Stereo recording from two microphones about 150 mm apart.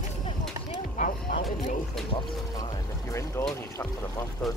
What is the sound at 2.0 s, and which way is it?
Music, centre (ahead or behind).